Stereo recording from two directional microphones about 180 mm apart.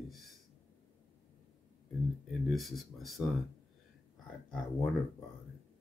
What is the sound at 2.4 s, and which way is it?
Speech, centre (ahead or behind).